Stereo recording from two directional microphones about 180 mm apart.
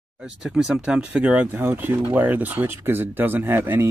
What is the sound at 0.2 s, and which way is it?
Speech, centre (ahead or behind).